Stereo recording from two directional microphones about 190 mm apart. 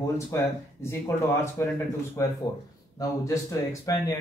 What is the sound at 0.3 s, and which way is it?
A man's voice, 15° left (ahead or behind).